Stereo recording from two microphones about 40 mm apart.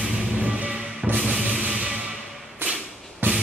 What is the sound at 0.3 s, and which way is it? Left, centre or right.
Music, right.